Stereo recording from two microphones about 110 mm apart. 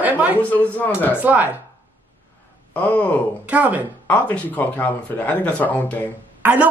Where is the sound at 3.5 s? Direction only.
15° right (ahead or behind).